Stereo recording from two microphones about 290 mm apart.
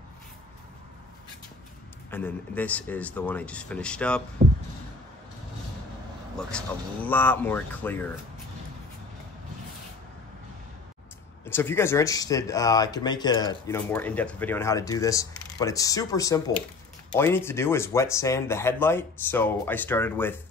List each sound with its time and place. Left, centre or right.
2.0 s a man's voice: centre
4.4 s a sound: right
6.3 s speech: centre
11.4 s speech: centre